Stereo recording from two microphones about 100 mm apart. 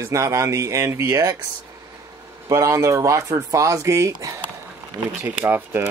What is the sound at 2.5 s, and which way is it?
Speech, 35° right (ahead or behind).